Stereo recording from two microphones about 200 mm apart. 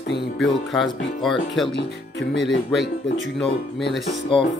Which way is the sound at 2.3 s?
65° left (ahead or behind).